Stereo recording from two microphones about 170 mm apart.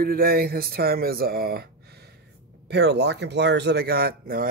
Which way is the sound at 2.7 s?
80° right.